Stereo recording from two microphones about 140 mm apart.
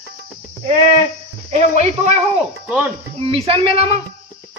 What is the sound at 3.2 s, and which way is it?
Speech, 45° right (ahead or behind).